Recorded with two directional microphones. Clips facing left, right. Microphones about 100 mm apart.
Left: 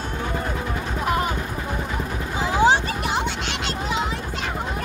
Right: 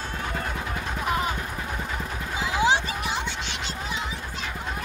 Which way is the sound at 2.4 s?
40° left (ahead or behind).